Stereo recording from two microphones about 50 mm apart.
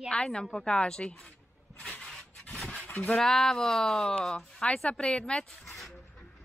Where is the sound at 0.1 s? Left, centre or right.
Centre.